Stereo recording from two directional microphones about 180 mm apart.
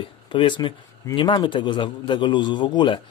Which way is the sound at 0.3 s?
25° left (ahead or behind).